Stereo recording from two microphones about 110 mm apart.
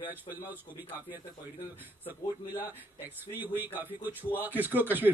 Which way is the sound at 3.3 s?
15° right (ahead or behind).